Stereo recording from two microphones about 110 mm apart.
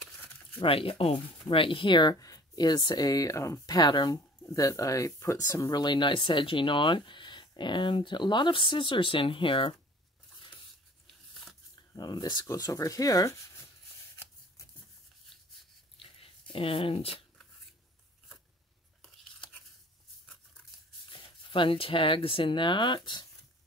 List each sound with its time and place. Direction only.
0.6 s speech: 55° left (ahead or behind)
12.0 s speech: 40° left (ahead or behind)
16.0 s a sound: 55° left (ahead or behind)
21.1 s speech: 50° left (ahead or behind)